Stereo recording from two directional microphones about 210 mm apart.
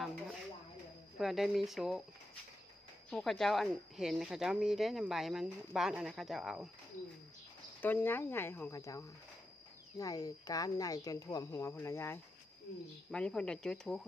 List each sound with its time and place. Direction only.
1.1 s speech: centre (ahead or behind)
3.1 s speech: centre (ahead or behind)
7.8 s a woman's voice: 10° left (ahead or behind)